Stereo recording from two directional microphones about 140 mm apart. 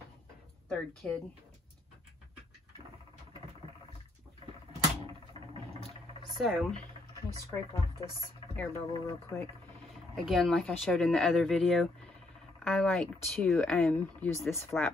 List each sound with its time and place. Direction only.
1.0 s speech: 10° left (ahead or behind)
6.3 s speech: centre (ahead or behind)
8.5 s speech: 20° left (ahead or behind)
10.1 s speech: centre (ahead or behind)
13.8 s speech: 15° left (ahead or behind)